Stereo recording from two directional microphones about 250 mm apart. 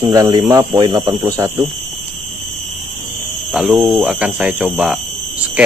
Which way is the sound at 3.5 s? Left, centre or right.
Centre.